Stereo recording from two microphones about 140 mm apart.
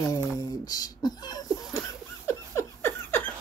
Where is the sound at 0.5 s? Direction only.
30° left (ahead or behind).